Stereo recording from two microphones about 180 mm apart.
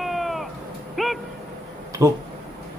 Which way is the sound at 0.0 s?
Centre (ahead or behind).